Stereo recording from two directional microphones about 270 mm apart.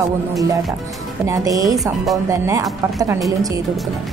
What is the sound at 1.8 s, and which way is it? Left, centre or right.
Speech, centre.